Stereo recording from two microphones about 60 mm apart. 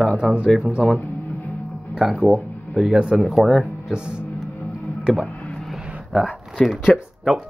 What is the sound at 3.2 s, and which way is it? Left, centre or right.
Speech, centre.